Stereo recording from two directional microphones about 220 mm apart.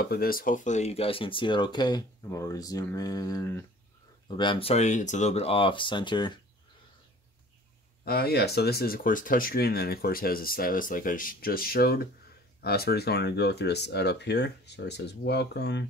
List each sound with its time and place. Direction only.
0.0 s speech: 45° left (ahead or behind); by 6.4 s 20° left (ahead or behind)
8.0 s speech: 45° left (ahead or behind)